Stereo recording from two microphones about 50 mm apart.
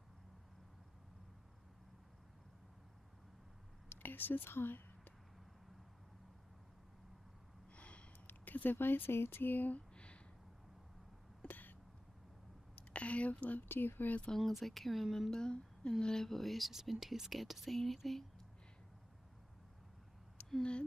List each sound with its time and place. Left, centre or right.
4.0 s speech: left
7.7 s gasp: left
8.3 s speech: left
9.9 s a sound: left
11.4 s throat clearing: left
12.7 s a sound: left
13.7 s speech: left
14.3 s speech: centre
15.3 s humming: centre
16.0 s speech: centre